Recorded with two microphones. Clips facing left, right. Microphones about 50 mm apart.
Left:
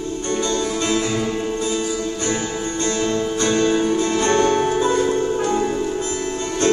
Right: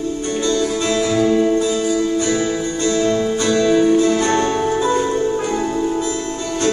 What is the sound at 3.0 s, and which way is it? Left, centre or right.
Music, right.